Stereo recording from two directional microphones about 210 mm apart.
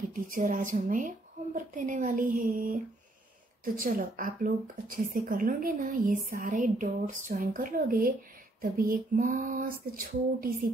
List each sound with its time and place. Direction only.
0.1 s a woman's voice: 40° right (ahead or behind)